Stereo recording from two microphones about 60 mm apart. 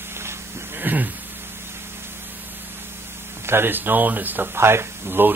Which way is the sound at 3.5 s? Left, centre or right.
Right.